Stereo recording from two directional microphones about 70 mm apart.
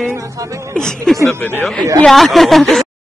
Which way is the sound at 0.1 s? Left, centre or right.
Right.